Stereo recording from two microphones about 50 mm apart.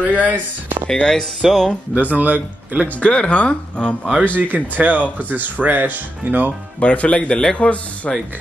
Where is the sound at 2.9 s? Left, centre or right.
Left.